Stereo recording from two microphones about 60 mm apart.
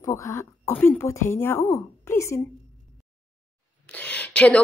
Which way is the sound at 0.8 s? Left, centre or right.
Left.